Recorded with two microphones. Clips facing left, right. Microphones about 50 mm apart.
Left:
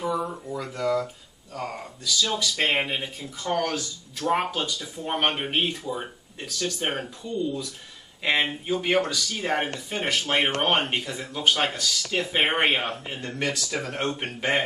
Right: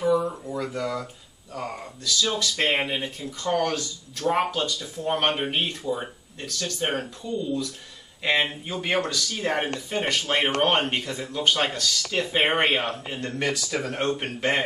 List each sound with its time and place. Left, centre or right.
0.5 s speech: centre